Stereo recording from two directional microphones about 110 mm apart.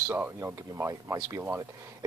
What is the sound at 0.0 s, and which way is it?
Speech, 20° right (ahead or behind).